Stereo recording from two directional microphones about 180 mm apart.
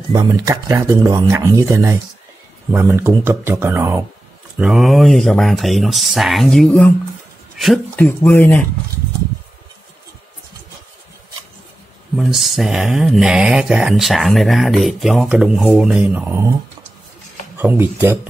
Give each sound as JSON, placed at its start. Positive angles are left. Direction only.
{"t": 0.1, "sound": "speech", "side_deg": -20}
{"t": 4.6, "sound": "speech", "side_deg": -5}
{"t": 8.0, "sound": "speech", "side_deg": 10}
{"t": 12.2, "sound": "speech", "side_deg": 0}
{"t": 17.6, "sound": "speech", "side_deg": -10}